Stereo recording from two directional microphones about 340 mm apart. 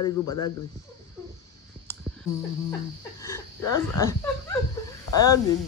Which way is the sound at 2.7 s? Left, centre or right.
Centre.